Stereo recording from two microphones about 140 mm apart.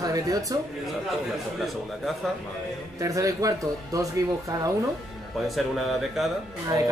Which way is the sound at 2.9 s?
25° right (ahead or behind).